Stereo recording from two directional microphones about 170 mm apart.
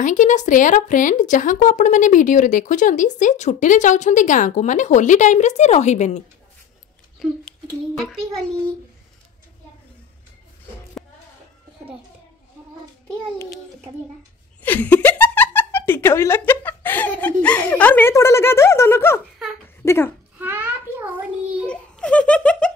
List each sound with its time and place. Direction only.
0.0 s speech: 45° left (ahead or behind)
8.0 s a child's voice: 5° left (ahead or behind)
14.6 s giggle: 10° left (ahead or behind)
17.4 s speech: 10° left (ahead or behind)
20.3 s a sound: 10° right (ahead or behind)
21.6 s speech: 5° left (ahead or behind)